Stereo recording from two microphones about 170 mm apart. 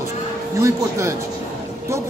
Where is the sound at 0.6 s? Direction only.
15° right (ahead or behind).